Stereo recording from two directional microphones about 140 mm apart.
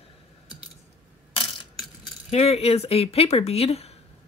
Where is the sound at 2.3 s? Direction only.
50° left (ahead or behind).